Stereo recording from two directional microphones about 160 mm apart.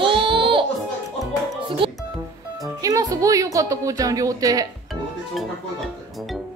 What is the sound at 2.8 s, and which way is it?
A woman's voice, 20° right (ahead or behind).